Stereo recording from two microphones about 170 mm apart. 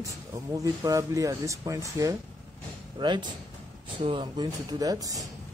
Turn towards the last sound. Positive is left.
turn(degrees=-20)  # may be behind; listen again after turning